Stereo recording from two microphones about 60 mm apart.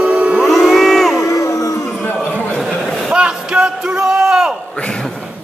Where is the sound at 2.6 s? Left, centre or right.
Centre.